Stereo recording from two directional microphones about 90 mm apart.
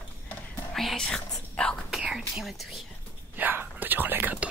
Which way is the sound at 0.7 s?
5° left (ahead or behind).